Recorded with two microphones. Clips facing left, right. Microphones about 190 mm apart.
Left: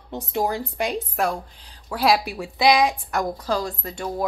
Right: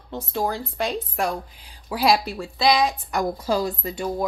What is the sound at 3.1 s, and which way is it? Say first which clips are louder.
Speech: right 1 dB; 5° right (ahead or behind).